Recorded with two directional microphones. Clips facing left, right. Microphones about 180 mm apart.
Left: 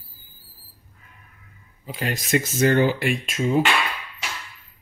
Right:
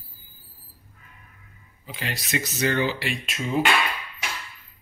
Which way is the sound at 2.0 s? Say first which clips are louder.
Left 6 dB; 45° left (ahead or behind).